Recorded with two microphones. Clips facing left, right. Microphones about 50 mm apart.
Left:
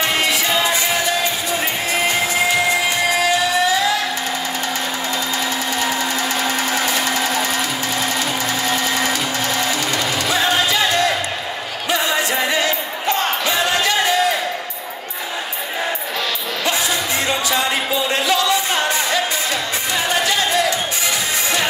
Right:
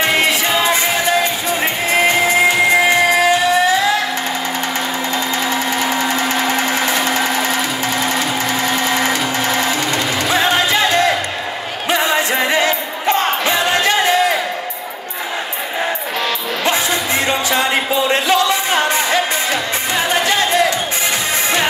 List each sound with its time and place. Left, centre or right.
0.0 s music: right
6.1 s blender: right
13.1 s music: right
16.6 s music: right